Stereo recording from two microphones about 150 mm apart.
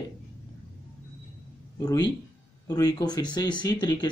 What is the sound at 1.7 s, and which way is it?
Speech, 25° left (ahead or behind).